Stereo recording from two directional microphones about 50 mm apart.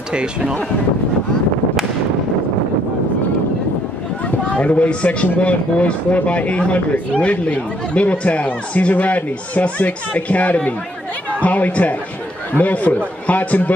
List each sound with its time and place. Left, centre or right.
0.1 s speech: centre
4.5 s speech: left